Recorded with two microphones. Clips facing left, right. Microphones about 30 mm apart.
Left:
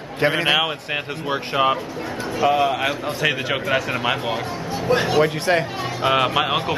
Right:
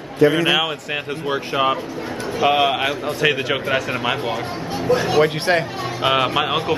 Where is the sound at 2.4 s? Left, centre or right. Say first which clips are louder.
Right 1 dB; right.